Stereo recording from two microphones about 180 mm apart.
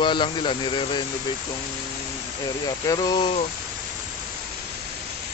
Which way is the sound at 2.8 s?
20° left (ahead or behind).